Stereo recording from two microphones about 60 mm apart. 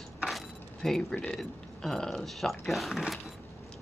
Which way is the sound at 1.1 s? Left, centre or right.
Centre.